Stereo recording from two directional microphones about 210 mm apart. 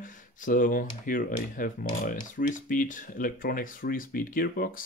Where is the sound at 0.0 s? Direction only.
40° left (ahead or behind).